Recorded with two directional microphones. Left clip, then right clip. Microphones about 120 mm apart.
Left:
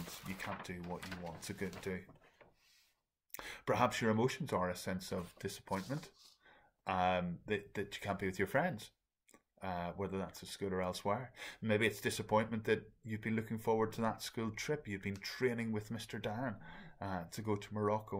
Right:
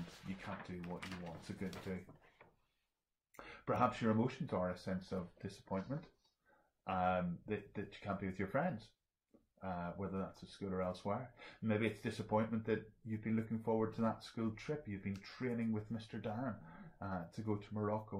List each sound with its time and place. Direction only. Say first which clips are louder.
0.5 s speech: left 2 dB; 15° left (ahead or behind)
3.3 s speech: left 3 dB; 15° left (ahead or behind)